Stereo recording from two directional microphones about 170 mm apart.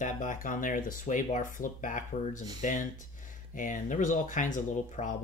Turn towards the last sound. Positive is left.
turn(degrees=45)  # may be behind; listen again after turning